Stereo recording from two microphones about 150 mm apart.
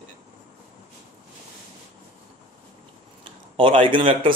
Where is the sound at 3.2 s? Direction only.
35° right (ahead or behind).